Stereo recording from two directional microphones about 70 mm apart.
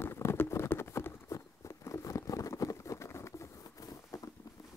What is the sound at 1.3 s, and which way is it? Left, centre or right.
Patter, left.